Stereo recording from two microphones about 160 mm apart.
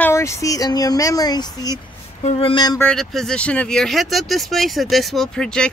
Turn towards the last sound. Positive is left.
turn(degrees=5)  # may be behind; listen again after turning